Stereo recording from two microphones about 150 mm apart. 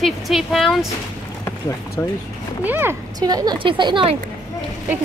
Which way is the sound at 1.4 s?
15° left (ahead or behind).